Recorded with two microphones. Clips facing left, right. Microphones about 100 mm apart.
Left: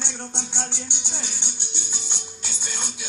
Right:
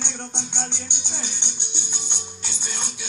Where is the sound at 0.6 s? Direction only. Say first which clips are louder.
Even; 20° right (ahead or behind).